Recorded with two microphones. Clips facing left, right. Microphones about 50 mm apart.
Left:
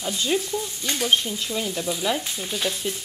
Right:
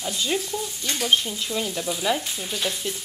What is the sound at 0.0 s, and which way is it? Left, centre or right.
Frying, centre.